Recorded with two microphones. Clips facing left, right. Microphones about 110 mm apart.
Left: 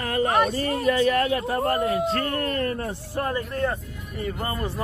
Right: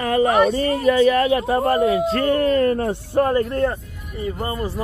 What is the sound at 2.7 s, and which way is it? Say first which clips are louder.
Speech: right 9 dB; 90° right.